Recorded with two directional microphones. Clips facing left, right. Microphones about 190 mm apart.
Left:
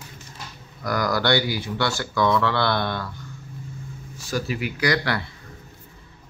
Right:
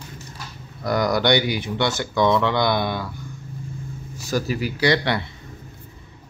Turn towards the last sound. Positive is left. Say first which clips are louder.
# right 3 dB
turn(degrees=-25)  # may be behind; listen again after turning